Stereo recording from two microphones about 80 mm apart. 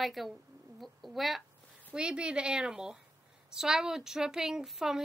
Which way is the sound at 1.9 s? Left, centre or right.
Centre.